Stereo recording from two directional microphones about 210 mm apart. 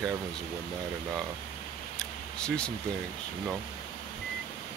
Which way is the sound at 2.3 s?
5° left (ahead or behind).